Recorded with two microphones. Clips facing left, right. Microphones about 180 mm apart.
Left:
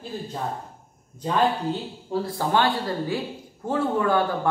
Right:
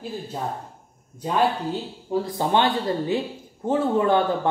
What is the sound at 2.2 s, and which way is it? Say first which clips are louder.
A man's voice: right 1 dB; 20° right (ahead or behind).